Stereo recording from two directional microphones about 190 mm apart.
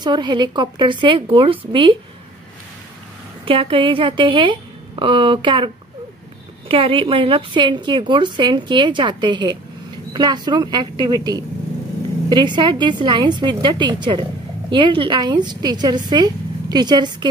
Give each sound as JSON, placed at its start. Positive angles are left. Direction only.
{"t": 0.0, "sound": "a woman's voice", "side_deg": -25}
{"t": 3.4, "sound": "a woman's voice", "side_deg": -30}
{"t": 6.7, "sound": "a woman's voice", "side_deg": -30}